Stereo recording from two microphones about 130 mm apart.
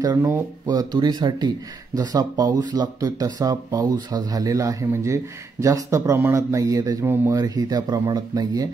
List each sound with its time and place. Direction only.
0.0 s speech: 25° right (ahead or behind)